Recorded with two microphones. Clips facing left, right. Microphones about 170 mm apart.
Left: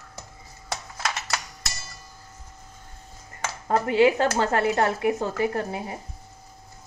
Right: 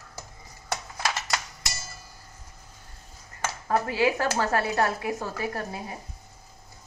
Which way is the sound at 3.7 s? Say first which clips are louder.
Left 5 dB; 25° left (ahead or behind).